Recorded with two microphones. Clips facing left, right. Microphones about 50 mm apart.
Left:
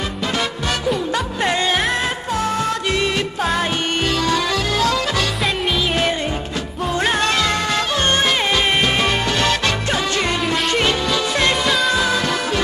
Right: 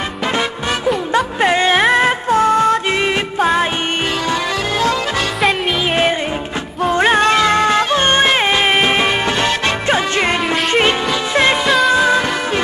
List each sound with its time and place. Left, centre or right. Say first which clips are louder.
0.8 s music: right 6 dB; centre
6.9 s music: right 6 dB; right